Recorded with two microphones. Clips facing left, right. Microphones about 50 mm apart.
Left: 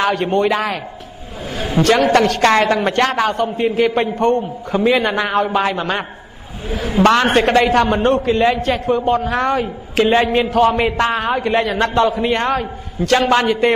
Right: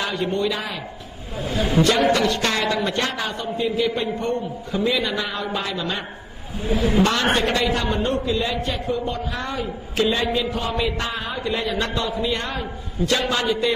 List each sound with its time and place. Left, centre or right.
0.0 s a man's voice: left
1.8 s a man's voice: left
7.6 s a man's voice: left
8.5 s a man's voice: left
13.3 s a man's voice: left